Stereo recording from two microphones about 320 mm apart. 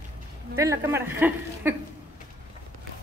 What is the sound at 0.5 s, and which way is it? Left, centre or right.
A woman's voice, centre.